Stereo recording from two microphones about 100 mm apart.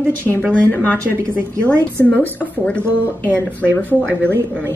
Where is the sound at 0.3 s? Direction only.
15° left (ahead or behind).